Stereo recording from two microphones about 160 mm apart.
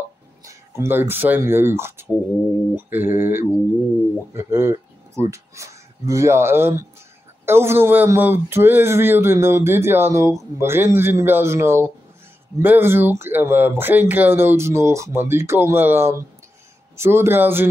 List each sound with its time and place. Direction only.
0.5 s speech: 15° right (ahead or behind)